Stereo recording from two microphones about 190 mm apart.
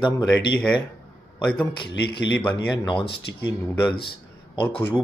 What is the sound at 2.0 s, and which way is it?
Speech, 60° left (ahead or behind).